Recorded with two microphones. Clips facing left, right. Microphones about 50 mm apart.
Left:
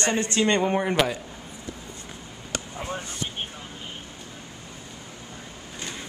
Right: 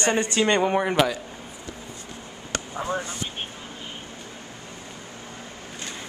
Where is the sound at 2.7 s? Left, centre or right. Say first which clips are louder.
Right 7 dB; right.